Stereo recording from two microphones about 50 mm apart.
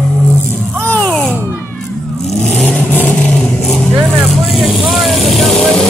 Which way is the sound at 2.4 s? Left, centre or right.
Centre.